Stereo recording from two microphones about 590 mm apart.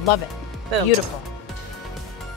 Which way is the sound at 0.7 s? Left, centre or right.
Right.